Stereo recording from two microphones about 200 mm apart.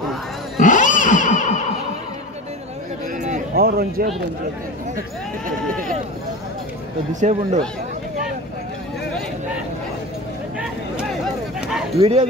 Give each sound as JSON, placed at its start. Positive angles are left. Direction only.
{"t": 0.6, "sound": "cat", "side_deg": 40}
{"t": 3.5, "sound": "speech", "side_deg": -50}
{"t": 7.2, "sound": "speech", "side_deg": -35}
{"t": 12.0, "sound": "speech", "side_deg": -30}